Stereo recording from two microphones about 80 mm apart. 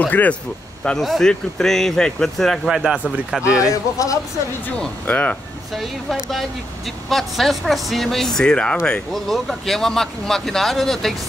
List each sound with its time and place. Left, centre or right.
0.0 s speech: centre
0.8 s speech: centre
2.7 s speech: centre
3.5 s a man's voice: left
4.7 s speech: centre
7.1 s speech: centre